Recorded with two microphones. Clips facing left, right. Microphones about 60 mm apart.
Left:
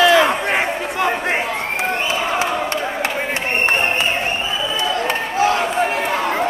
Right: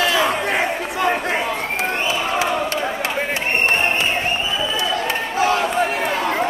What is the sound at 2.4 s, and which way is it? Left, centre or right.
Crowd, left.